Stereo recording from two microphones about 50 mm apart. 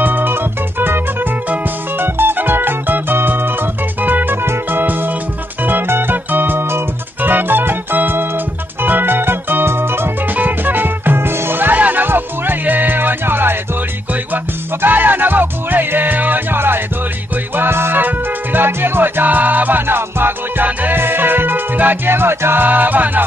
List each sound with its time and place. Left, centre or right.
0.0 s organ: right
2.0 s music: right
8.8 s organ: right
10.3 s music: right
18.0 s music: right
19.9 s music: right